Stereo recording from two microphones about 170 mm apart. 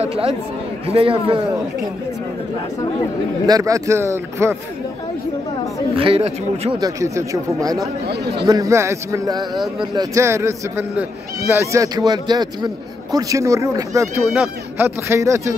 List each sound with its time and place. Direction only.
0.0 s speech: 35° right (ahead or behind)
3.4 s a man's voice: 20° right (ahead or behind)
5.9 s speech: 35° right (ahead or behind)
6.8 s a man's voice: 20° right (ahead or behind)